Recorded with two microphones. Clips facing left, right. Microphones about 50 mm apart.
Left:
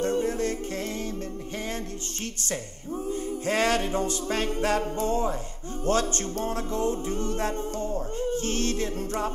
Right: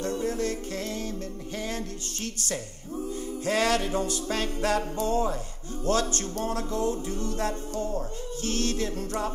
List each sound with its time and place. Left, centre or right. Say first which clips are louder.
0.0 s music: left 3 dB; left
3.1 s music: left 1 dB; left